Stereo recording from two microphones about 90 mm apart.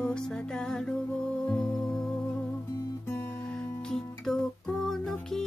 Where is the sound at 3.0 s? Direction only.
25° left (ahead or behind).